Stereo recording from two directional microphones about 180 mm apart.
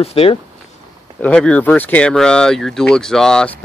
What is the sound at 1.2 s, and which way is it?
Speech, 5° left (ahead or behind).